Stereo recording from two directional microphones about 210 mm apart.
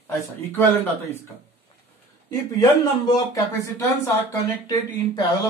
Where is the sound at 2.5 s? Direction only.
15° left (ahead or behind).